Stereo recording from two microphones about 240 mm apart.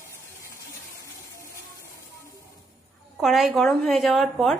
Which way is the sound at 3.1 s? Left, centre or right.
Centre.